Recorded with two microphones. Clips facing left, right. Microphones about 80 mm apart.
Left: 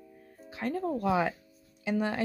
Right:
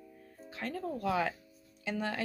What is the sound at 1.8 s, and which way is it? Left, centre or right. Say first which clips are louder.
Speech: left 5 dB; centre.